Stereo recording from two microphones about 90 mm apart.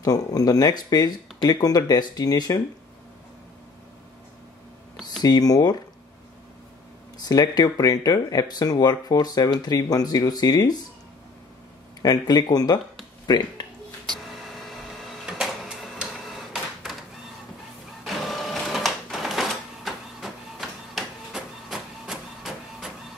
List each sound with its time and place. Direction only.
0.0 s speech: 45° left (ahead or behind)
5.2 s speech: 45° left (ahead or behind)
7.2 s speech: 45° left (ahead or behind)
12.0 s speech: 50° left (ahead or behind)
14.7 s printer: centre (ahead or behind)
18.0 s printer: centre (ahead or behind)